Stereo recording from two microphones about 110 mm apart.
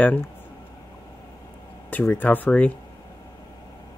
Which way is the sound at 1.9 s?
15° left (ahead or behind).